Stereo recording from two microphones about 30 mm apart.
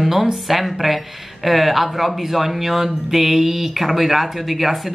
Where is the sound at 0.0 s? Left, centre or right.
Centre.